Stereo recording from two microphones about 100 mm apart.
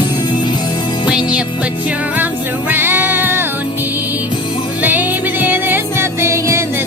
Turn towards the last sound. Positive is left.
turn(degrees=-25)  # may be behind; listen again after turning